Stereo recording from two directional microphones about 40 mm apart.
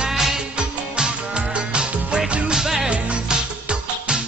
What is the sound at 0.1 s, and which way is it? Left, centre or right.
Music, centre.